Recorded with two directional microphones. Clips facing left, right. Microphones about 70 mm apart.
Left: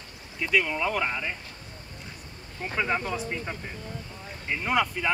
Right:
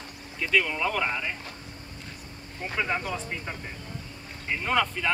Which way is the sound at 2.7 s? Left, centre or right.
Centre.